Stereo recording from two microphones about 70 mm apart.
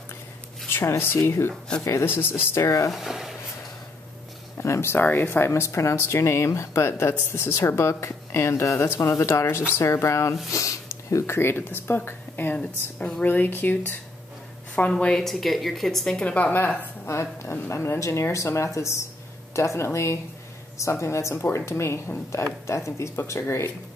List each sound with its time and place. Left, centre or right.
0.7 s speech: left
2.9 s speech: centre
4.6 s speech: left
5.0 s speech: left
5.5 s speech: left
12.5 s a woman's voice: centre
13.3 s speech: left
14.8 s a woman's voice: centre
16.5 s speech: left